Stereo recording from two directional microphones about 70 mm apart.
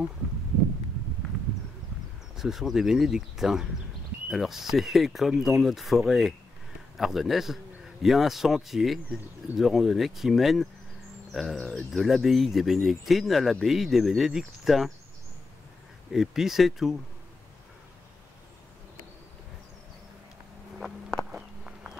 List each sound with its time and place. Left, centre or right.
2.3 s a man's voice: centre
11.5 s speech: centre
11.9 s a man's voice: centre
16.1 s a man's voice: centre
21.3 s walk: centre